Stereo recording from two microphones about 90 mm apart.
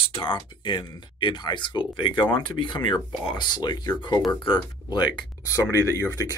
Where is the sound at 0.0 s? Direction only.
80° left; by 4.2 s 50° left (ahead or behind).